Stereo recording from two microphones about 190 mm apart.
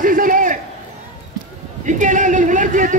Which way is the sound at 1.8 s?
40° right (ahead or behind).